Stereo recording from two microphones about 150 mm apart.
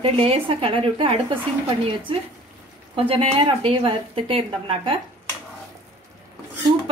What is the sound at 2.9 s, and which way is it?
A woman's voice, 40° right (ahead or behind).